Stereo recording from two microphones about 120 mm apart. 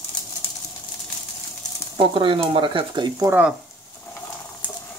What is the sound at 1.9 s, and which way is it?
Speech, 45° right (ahead or behind).